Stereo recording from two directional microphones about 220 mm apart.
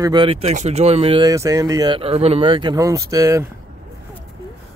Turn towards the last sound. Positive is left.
turn(degrees=-15)  # may be behind; listen again after turning